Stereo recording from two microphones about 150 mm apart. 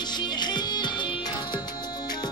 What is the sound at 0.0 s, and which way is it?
Music, 30° left (ahead or behind).